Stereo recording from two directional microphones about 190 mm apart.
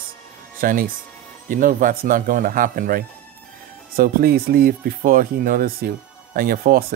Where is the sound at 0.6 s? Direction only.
50° right (ahead or behind).